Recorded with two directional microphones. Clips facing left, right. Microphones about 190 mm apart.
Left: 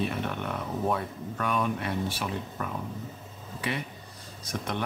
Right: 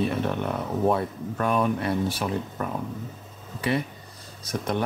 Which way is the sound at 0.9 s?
40° right (ahead or behind).